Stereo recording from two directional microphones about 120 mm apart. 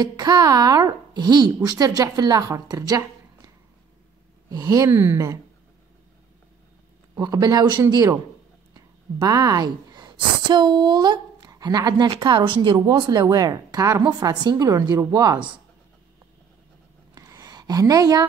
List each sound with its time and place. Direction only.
0.0 s a woman's voice: 35° right (ahead or behind)
7.2 s a woman's voice: 35° right (ahead or behind)
17.1 s a sound: 30° right (ahead or behind)